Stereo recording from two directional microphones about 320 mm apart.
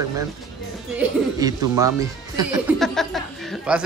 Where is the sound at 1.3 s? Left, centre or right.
Centre.